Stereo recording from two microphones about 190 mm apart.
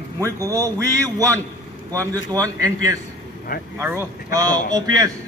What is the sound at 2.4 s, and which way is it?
A man's voice, 15° right (ahead or behind).